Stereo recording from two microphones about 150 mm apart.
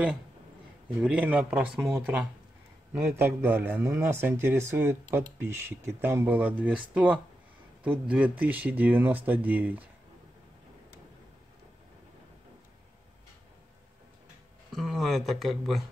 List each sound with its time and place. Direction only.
1.0 s speech: 10° right (ahead or behind)
2.9 s speech: 15° right (ahead or behind)
14.7 s speech: centre (ahead or behind)